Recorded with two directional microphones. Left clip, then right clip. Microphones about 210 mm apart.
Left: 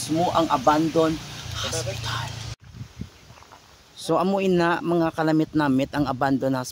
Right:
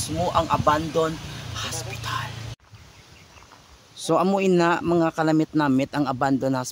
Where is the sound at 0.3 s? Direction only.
20° right (ahead or behind).